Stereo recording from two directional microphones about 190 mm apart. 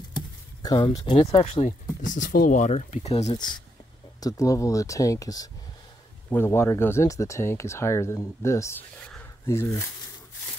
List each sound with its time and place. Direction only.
0.1 s speech: 20° left (ahead or behind)
4.2 s speech: 20° left (ahead or behind)